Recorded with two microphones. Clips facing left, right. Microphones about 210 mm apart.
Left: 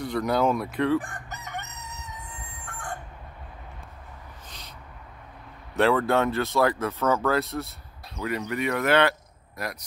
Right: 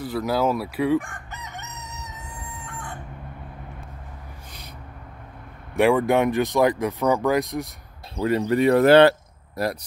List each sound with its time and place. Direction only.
0.0 s speech: 5° right (ahead or behind)
0.9 s chicken: 35° left (ahead or behind); by 2.0 s 60° left (ahead or behind)
2.6 s chicken: 50° left (ahead or behind)
5.8 s speech: 15° right (ahead or behind)
8.2 s speech: 30° right (ahead or behind)